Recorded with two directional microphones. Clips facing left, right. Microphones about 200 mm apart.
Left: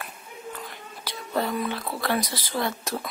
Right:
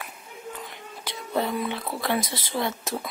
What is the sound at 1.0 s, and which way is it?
Whispering, 20° right (ahead or behind).